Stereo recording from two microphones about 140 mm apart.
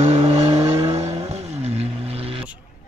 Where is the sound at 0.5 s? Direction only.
25° right (ahead or behind).